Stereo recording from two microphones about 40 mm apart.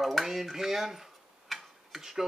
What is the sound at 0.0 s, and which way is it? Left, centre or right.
Speech, centre.